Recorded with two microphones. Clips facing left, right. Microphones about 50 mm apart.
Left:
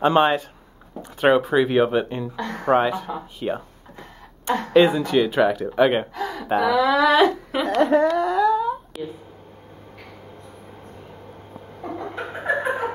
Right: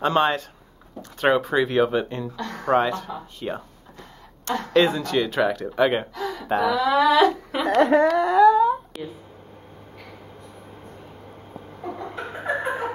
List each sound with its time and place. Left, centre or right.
0.0 s speech: centre
2.3 s speech: left
4.8 s a woman's voice: centre
7.1 s speech: left
7.5 s a woman's voice: centre
8.2 s humming: centre
11.9 s a sound: centre